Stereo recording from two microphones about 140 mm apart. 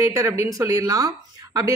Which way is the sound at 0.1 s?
20° right (ahead or behind).